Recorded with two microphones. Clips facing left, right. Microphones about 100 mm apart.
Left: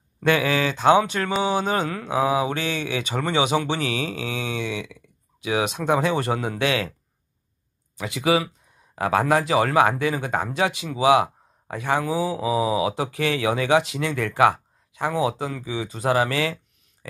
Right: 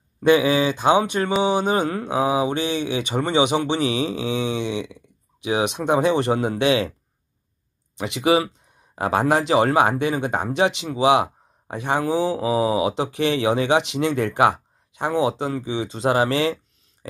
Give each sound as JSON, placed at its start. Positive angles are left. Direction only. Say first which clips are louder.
{"t": 0.2, "sound": "mantra", "louder": "right 4 dB", "side_deg": -20}
{"t": 1.4, "sound": "speech", "louder": "right 2 dB", "side_deg": -20}
{"t": 8.0, "sound": "speech", "louder": "right 3 dB", "side_deg": -25}